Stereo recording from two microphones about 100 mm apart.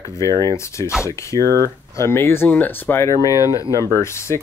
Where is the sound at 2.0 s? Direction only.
25° left (ahead or behind).